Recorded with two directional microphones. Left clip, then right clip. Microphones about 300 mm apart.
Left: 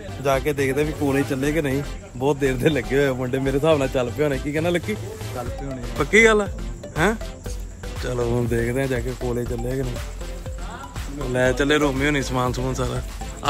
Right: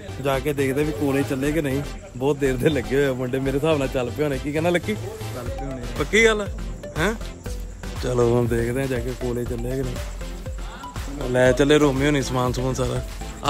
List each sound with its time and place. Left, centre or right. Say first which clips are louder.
0.2 s a man's voice: left 2 dB; centre
4.5 s speech: right 1 dB; centre
5.9 s a man's voice: left 3 dB; centre
8.2 s speech: right 5 dB; right
8.5 s a man's voice: left 1 dB; centre
11.3 s speech: right 3 dB; right